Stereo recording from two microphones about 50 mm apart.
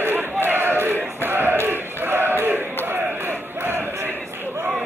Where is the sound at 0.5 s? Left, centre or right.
Right.